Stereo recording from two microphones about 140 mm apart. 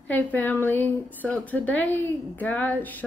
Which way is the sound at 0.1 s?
10° left (ahead or behind).